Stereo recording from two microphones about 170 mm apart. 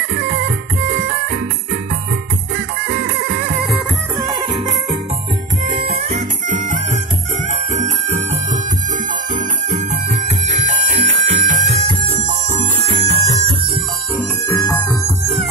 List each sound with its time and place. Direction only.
5.7 s music: 35° right (ahead or behind)
9.7 s music: 45° right (ahead or behind)
14.5 s music: 15° left (ahead or behind)